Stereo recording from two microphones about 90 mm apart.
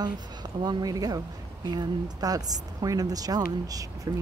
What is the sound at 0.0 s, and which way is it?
Speech, 50° right (ahead or behind).